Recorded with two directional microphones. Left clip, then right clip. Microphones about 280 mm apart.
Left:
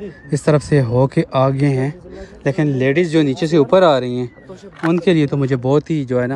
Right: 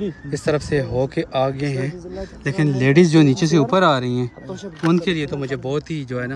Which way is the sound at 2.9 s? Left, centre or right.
Centre.